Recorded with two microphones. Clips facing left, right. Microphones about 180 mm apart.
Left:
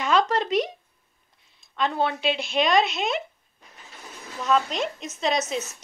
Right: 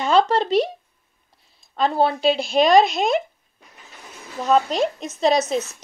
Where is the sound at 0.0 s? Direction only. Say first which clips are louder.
Right 4 dB; 30° right (ahead or behind).